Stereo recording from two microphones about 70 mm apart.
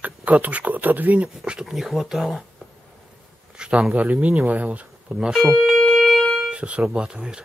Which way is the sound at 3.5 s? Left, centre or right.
Centre.